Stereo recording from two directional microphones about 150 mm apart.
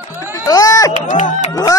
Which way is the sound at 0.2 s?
20° left (ahead or behind).